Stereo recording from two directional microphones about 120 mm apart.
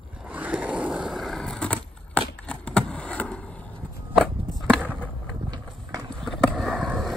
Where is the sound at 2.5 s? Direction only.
10° left (ahead or behind).